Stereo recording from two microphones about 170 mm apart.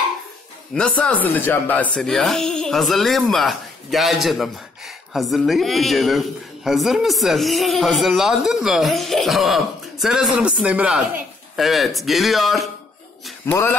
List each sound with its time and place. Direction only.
0.7 s a woman's voice: 5° left (ahead or behind)
13.5 s music: 10° left (ahead or behind)